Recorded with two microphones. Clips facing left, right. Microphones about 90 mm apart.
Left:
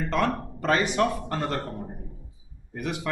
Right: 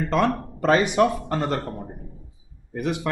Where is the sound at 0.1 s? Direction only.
20° right (ahead or behind).